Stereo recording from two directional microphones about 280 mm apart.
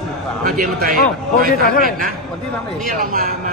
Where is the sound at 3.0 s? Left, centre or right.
Right.